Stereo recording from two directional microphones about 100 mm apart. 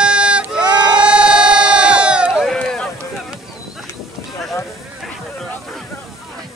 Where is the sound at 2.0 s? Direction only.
10° right (ahead or behind).